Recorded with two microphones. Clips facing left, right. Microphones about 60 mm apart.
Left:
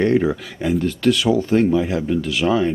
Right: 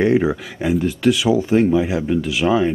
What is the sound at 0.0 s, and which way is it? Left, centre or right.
Speech, centre.